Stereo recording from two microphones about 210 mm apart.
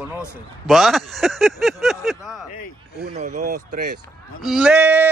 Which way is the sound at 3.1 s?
35° right (ahead or behind).